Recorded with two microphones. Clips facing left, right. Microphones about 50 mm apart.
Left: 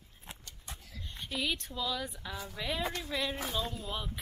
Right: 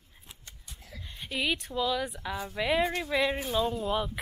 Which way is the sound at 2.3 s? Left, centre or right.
Centre.